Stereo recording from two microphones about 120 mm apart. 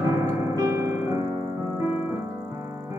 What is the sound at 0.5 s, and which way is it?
Music, 25° right (ahead or behind).